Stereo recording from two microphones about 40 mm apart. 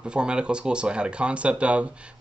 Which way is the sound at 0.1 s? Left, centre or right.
Right.